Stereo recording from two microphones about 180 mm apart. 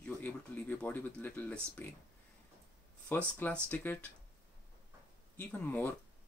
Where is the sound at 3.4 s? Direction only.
10° left (ahead or behind).